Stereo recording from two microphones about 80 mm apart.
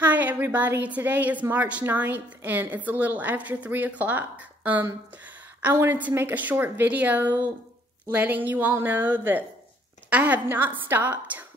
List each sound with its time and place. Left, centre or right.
0.0 s a woman's voice: right